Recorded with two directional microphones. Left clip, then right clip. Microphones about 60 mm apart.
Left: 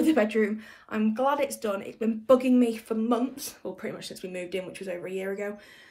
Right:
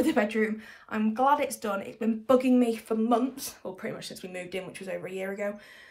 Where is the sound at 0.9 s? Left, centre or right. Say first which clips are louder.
Right 2 dB; left.